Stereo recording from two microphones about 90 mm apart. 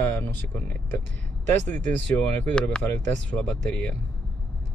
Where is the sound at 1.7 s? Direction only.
20° left (ahead or behind).